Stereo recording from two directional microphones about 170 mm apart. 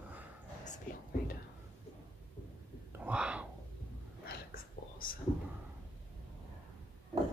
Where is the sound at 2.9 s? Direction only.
10° right (ahead or behind).